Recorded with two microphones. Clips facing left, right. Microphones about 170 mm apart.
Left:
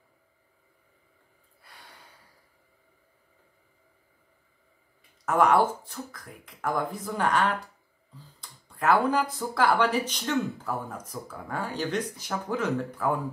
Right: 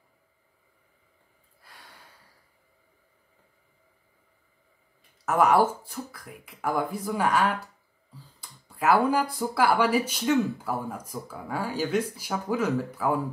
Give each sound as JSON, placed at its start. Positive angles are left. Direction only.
{"t": 1.6, "sound": "gasp", "side_deg": 0}
{"t": 5.2, "sound": "speech", "side_deg": -5}